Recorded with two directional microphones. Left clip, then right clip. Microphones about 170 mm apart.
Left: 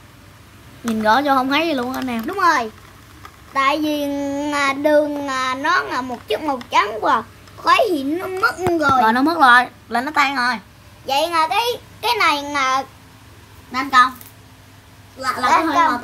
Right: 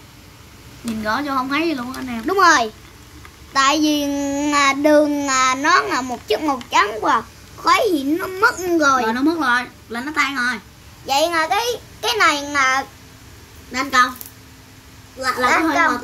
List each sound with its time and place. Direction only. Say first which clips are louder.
1.0 s a woman's voice: left 6 dB; 55° left (ahead or behind)
2.2 s a child's voice: right 4 dB; 10° right (ahead or behind)
9.0 s a woman's voice: left 5 dB; 60° left (ahead or behind)
11.1 s a child's voice: even; 5° right (ahead or behind)
15.4 s a child's voice: left 1 dB; centre (ahead or behind)